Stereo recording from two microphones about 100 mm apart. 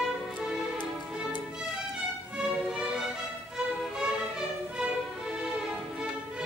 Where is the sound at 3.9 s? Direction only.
5° right (ahead or behind).